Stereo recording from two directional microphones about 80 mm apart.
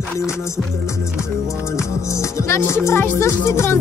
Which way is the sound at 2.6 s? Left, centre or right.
Left.